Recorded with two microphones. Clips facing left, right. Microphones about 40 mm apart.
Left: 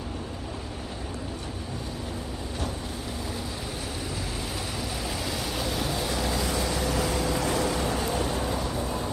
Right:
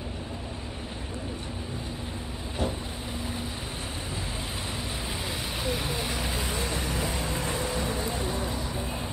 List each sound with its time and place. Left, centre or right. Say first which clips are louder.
5.6 s vehicle: even; right